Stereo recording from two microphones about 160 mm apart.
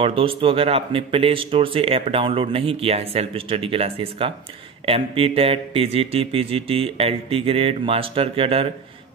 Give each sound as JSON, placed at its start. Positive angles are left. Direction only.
{"t": 0.0, "sound": "speech", "side_deg": -35}